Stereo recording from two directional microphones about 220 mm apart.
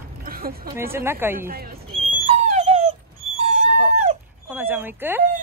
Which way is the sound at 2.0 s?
30° right (ahead or behind).